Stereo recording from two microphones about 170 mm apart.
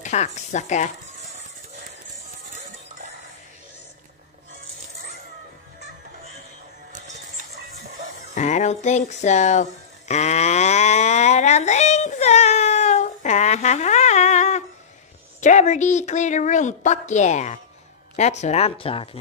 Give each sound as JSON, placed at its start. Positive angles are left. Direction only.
{"t": 0.0, "sound": "speech", "side_deg": 45}
{"t": 8.4, "sound": "music", "side_deg": 45}
{"t": 15.4, "sound": "a woman's voice", "side_deg": 45}